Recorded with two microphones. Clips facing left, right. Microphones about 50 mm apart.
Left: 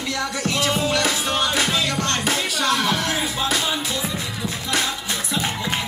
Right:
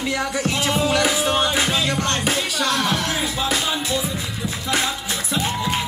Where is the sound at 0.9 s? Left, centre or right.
Centre.